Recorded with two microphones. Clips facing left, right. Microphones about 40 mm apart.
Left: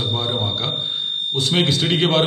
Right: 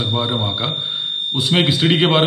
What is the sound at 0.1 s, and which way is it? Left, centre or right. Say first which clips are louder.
A man's voice: right 2 dB; centre.